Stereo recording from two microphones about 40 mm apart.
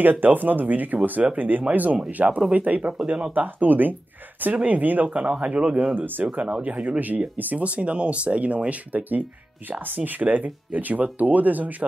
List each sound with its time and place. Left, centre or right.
0.0 s speech: right
5.3 s speech: right
5.9 s speech: right
6.6 s speech: right
7.6 s speech: right